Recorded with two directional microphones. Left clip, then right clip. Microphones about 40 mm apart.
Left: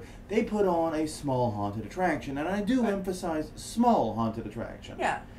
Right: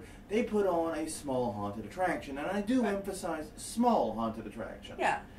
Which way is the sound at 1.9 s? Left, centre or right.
Left.